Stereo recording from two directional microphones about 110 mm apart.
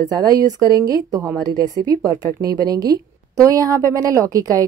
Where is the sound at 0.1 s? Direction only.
35° right (ahead or behind).